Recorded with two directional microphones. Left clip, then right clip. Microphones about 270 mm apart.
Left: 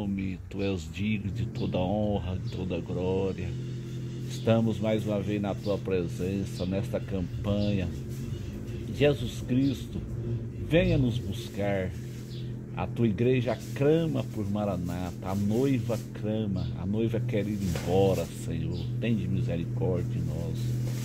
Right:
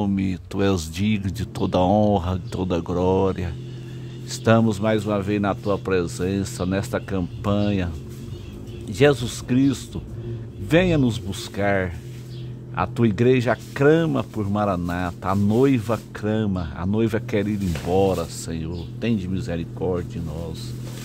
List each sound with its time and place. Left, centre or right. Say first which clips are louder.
0.0 s speech: right 10 dB; right
4.5 s speech: right 8 dB; right
8.9 s speech: right 8 dB; right